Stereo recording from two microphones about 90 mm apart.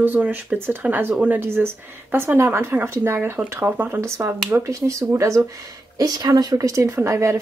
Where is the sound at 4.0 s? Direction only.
35° right (ahead or behind).